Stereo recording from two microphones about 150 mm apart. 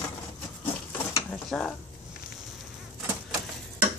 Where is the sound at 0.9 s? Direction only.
15° left (ahead or behind).